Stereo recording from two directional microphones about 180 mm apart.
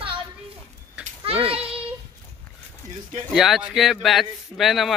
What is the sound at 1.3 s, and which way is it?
Child singing, 35° right (ahead or behind).